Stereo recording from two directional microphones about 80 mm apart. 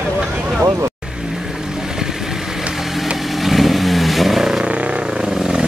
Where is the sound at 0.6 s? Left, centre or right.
Right.